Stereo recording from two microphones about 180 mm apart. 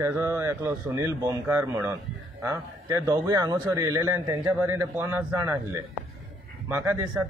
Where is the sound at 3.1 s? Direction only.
20° right (ahead or behind).